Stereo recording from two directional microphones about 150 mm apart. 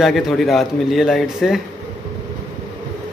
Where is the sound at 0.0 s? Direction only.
Centre (ahead or behind).